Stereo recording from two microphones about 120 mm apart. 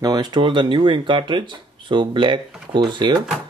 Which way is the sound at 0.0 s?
35° right (ahead or behind).